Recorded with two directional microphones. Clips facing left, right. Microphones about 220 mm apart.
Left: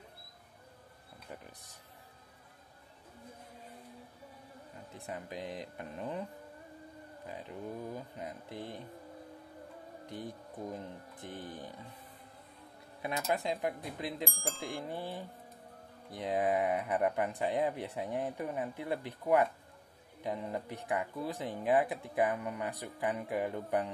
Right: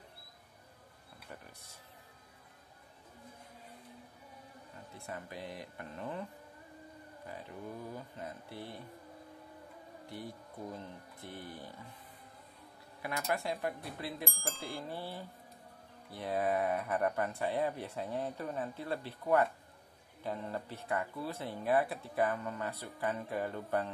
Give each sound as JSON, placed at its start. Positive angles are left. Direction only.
{"t": 4.9, "sound": "speech", "side_deg": 20}
{"t": 7.2, "sound": "speech", "side_deg": 20}
{"t": 10.0, "sound": "speech", "side_deg": 20}
{"t": 13.0, "sound": "speech", "side_deg": 20}
{"t": 14.2, "sound": "speech", "side_deg": 0}
{"t": 14.9, "sound": "speech", "side_deg": 15}